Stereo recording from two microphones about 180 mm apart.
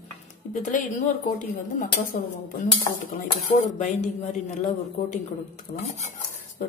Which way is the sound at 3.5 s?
45° left (ahead or behind).